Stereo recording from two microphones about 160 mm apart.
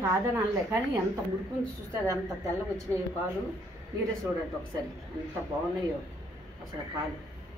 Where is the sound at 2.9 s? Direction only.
25° right (ahead or behind).